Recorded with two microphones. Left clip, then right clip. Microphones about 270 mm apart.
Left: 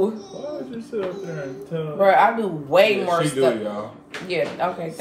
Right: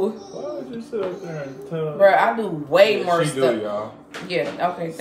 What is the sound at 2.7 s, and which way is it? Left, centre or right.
Speech, centre.